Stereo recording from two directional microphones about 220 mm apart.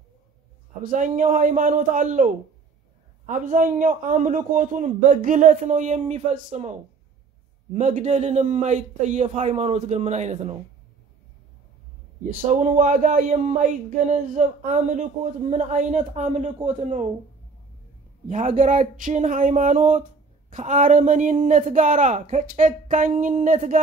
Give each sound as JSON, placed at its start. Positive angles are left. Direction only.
{"t": 0.8, "sound": "speech", "side_deg": -35}
{"t": 7.7, "sound": "speech", "side_deg": -30}
{"t": 12.2, "sound": "speech", "side_deg": -35}
{"t": 18.3, "sound": "speech", "side_deg": -35}